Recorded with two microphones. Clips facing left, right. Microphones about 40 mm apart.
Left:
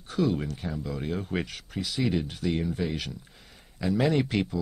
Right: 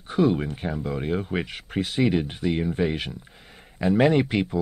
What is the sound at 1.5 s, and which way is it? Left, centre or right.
Speech, right.